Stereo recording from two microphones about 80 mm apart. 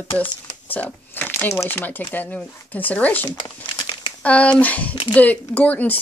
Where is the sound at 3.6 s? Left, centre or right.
Left.